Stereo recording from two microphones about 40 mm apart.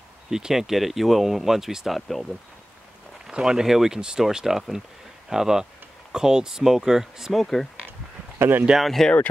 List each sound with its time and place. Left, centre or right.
0.3 s speech: centre
1.9 s speech: centre
3.3 s speech: centre
7.3 s speech: centre
8.4 s speech: right
8.7 s speech: centre